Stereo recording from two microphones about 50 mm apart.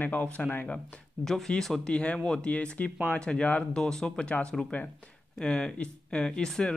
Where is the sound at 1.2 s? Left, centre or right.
Centre.